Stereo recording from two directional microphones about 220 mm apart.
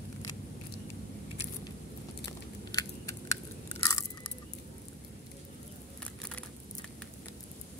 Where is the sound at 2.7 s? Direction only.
20° left (ahead or behind).